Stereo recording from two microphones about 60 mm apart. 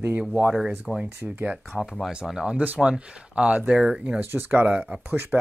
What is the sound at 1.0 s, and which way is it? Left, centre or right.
Speech, right.